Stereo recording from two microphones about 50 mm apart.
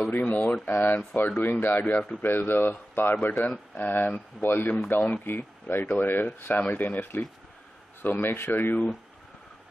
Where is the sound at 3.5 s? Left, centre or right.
Left.